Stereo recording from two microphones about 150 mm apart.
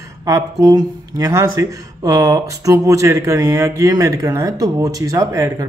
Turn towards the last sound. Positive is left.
turn(degrees=-20)  # may be behind; listen again after turning